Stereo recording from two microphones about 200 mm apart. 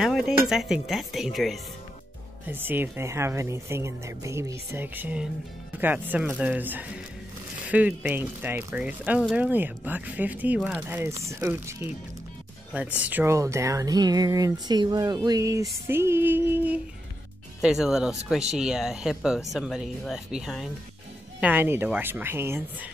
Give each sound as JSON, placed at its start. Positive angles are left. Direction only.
{"t": 0.0, "sound": "speech", "side_deg": 0}